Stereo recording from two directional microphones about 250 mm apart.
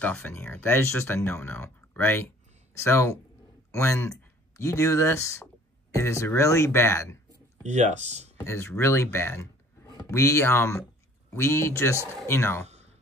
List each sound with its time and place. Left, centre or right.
0.0 s speech: centre
7.6 s speech: right
8.4 s speech: centre
12.6 s a sound: right